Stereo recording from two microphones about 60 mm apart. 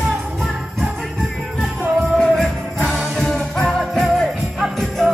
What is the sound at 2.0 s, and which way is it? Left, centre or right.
Music, centre.